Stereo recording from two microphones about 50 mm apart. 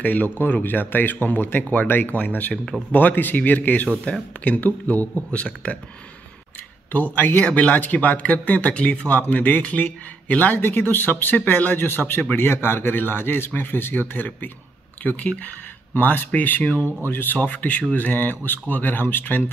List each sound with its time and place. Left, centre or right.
0.0 s speech: left
2.5 s speech: centre
2.9 s speech: left
4.0 s speech: left
4.6 s speech: left
5.1 s speech: left
6.9 s speech: left
8.7 s speech: left
9.3 s speech: left
10.5 s speech: left
17.4 s speech: left